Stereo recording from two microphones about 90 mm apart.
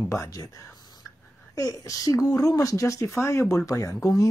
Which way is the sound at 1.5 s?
40° left (ahead or behind).